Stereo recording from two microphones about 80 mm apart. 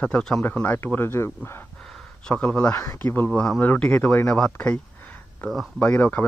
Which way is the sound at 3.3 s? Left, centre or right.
Centre.